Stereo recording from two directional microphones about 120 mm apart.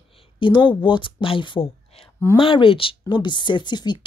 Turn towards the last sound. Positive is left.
turn(degrees=40)  # may be behind; listen again after turning